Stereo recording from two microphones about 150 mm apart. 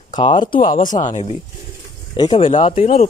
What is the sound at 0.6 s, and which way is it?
Speech, 60° left (ahead or behind).